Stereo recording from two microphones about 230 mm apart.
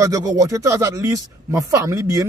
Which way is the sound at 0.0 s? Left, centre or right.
Centre.